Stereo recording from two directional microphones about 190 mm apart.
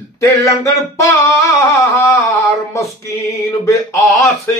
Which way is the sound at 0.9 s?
15° left (ahead or behind).